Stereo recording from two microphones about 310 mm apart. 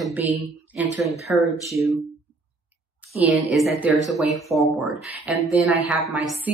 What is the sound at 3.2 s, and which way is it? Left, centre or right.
Speech, centre.